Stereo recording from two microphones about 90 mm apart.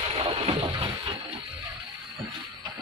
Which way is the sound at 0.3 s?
80° right.